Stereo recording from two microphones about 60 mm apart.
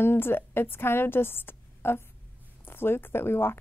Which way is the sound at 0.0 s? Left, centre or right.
Left.